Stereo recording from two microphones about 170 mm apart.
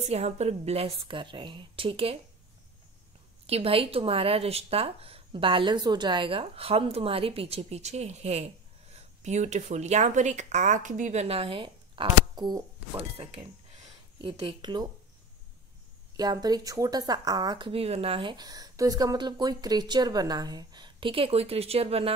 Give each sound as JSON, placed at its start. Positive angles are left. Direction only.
{"t": 0.0, "sound": "speech", "side_deg": -40}
{"t": 3.4, "sound": "speech", "side_deg": -35}
{"t": 16.2, "sound": "speech", "side_deg": -25}